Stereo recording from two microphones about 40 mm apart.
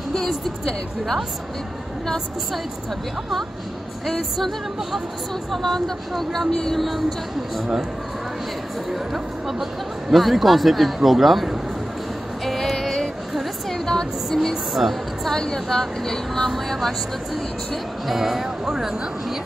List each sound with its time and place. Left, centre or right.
4.0 s speech: centre
5.5 s speech: centre
7.5 s speech: centre
9.1 s speech: centre
12.4 s music: centre
13.3 s a sound: centre
13.8 s music: centre
14.7 s a woman's voice: centre
15.3 s speech: centre
18.0 s speech: centre